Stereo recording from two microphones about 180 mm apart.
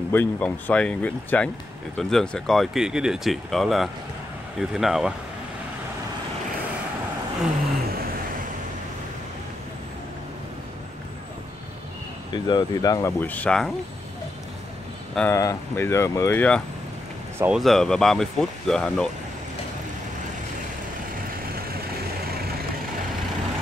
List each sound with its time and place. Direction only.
0.1 s speech: 10° left (ahead or behind)
12.3 s speech: 25° left (ahead or behind)
13.2 s speech: 10° left (ahead or behind)
15.1 s speech: 15° left (ahead or behind)
17.4 s speech: 5° right (ahead or behind)